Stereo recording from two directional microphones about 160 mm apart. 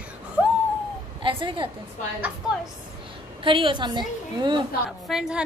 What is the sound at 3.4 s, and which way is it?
A woman's voice, 30° right (ahead or behind).